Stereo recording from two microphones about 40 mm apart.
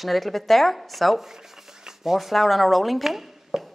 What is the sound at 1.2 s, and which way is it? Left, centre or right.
Speech, centre.